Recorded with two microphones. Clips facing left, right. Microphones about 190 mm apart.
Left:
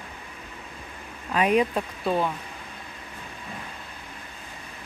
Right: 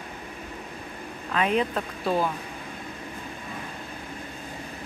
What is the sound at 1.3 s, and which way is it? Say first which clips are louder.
Speech: left 3 dB; 10° left (ahead or behind).